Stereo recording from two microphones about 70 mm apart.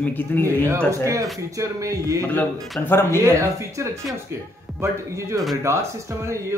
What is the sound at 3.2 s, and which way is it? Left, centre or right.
Speech, right.